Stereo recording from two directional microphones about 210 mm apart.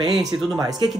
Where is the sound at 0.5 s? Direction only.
15° right (ahead or behind).